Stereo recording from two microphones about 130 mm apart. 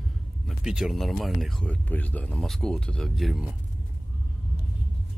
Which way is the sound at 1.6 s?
10° left (ahead or behind).